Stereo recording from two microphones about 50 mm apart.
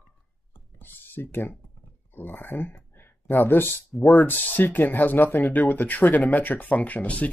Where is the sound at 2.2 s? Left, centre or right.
Left.